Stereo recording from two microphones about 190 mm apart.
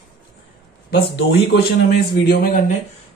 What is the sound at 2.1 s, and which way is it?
Speech, 55° left (ahead or behind).